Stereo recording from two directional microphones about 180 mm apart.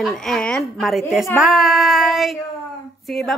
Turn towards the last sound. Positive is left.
turn(degrees=0)  # may be behind; listen again after turning